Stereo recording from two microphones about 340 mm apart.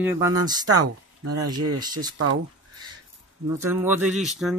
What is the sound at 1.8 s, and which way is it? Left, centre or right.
Speech, centre.